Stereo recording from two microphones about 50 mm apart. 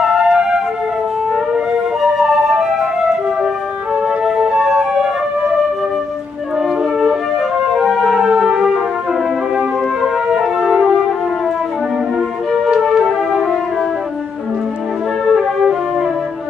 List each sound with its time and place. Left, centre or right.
0.3 s music: centre
2.0 s flute: centre
4.2 s flute: centre
7.1 s music: centre
8.3 s music: centre
10.3 s music: centre
12.8 s music: centre
15.3 s music: centre